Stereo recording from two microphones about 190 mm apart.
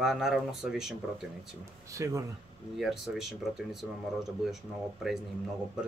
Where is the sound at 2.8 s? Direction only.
Centre (ahead or behind).